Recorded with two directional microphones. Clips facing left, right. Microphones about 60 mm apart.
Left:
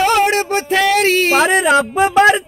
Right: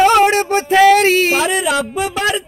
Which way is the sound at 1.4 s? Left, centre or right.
Left.